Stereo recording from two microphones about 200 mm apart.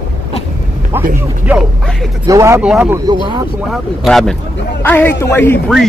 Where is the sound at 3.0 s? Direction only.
20° right (ahead or behind).